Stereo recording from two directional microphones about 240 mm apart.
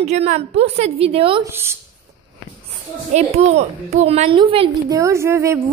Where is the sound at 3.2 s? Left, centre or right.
Right.